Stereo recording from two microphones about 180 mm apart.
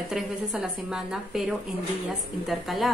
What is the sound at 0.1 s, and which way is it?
Speech, 5° right (ahead or behind).